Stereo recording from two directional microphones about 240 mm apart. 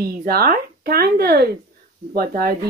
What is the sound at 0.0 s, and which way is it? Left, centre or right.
Speech, right.